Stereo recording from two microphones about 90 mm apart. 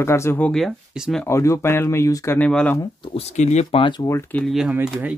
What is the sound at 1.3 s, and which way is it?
Speech, 35° left (ahead or behind).